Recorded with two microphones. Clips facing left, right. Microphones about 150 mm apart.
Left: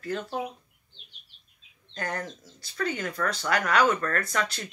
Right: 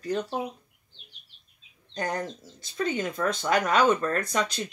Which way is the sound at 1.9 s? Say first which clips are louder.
Right 3 dB; 20° right (ahead or behind).